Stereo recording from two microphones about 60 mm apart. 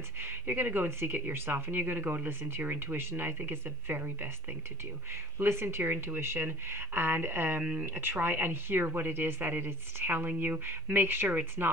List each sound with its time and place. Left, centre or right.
0.2 s speech: right
5.4 s speech: right